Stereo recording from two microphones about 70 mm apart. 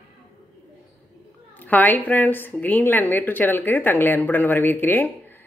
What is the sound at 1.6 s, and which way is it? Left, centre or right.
Speech, left.